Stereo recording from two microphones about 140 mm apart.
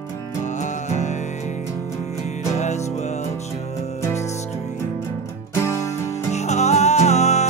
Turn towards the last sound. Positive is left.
turn(degrees=50)  # may be behind; listen again after turning